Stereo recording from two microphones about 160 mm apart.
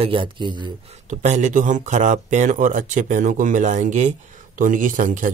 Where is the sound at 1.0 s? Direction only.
50° right (ahead or behind).